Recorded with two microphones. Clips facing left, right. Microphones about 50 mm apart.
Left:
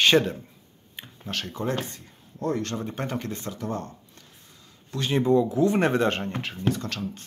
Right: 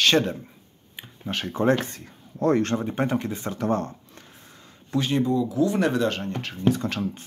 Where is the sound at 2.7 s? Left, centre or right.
Centre.